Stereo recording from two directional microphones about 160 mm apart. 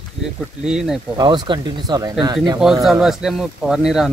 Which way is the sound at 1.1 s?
25° right (ahead or behind).